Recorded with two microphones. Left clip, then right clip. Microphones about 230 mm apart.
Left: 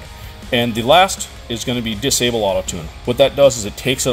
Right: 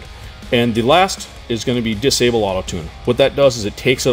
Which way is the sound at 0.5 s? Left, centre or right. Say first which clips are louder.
Even; right.